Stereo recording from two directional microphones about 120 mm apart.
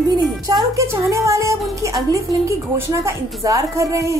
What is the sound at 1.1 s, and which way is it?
A woman's voice, 25° right (ahead or behind).